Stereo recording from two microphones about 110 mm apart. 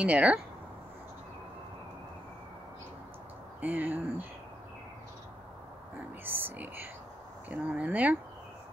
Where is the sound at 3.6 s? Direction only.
15° right (ahead or behind).